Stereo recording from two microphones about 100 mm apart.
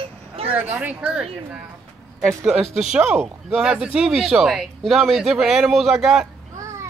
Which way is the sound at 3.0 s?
15° right (ahead or behind).